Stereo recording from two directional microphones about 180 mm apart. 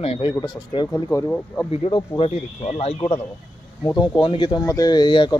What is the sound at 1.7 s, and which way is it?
Speech, 30° left (ahead or behind).